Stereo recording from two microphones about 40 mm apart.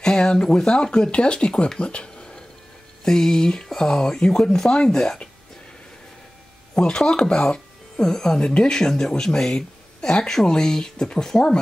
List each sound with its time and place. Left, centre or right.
0.0 s speech: centre
1.8 s a sound: left
3.1 s speech: centre
6.7 s speech: left